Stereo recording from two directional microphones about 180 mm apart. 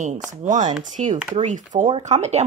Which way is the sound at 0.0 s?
45° right (ahead or behind).